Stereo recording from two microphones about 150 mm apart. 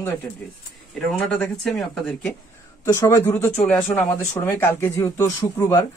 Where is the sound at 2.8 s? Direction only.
20° left (ahead or behind).